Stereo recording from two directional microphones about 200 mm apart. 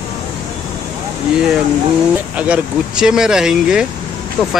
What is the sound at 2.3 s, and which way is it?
Speech, 5° right (ahead or behind).